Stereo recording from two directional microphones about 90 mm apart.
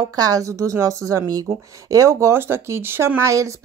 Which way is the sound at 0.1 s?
45° right (ahead or behind).